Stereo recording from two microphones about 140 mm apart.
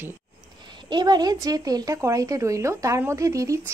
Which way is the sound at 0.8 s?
30° right (ahead or behind).